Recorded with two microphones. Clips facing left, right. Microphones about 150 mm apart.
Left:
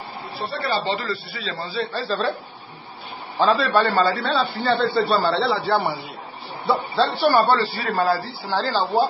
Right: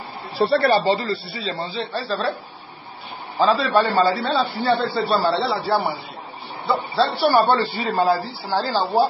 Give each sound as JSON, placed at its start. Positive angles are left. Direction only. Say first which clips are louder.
{"t": 0.4, "sound": "speech", "louder": "right 12 dB", "side_deg": -90}
{"t": 0.9, "sound": "speech", "louder": "right 3 dB", "side_deg": -30}
{"t": 2.0, "sound": "speech", "louder": "right 1 dB", "side_deg": -5}
{"t": 3.3, "sound": "speech", "louder": "right 1 dB", "side_deg": 0}
{"t": 4.7, "sound": "speech", "louder": "left 1 dB", "side_deg": 0}